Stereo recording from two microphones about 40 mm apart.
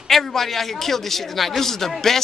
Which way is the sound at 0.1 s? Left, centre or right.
Centre.